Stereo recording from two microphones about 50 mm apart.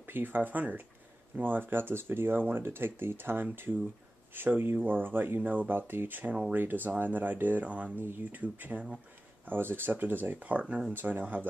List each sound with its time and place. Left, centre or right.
0.0 s speech: right
5.4 s speech: right
5.8 s speech: right
8.0 s speech: right
8.4 s speech: right
9.5 s speech: right